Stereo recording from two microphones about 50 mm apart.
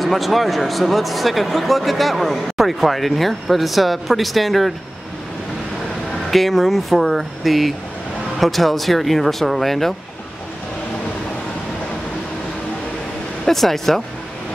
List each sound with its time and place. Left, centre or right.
0.0 s speech: centre
6.3 s speech: centre
13.5 s speech: centre